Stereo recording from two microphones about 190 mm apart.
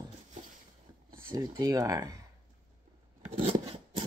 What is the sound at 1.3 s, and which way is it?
Speech, 20° right (ahead or behind).